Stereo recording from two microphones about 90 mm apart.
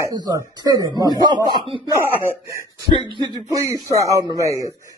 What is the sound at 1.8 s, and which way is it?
Speech, 35° right (ahead or behind).